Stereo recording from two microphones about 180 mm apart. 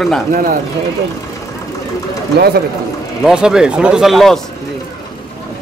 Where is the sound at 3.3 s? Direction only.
5° right (ahead or behind).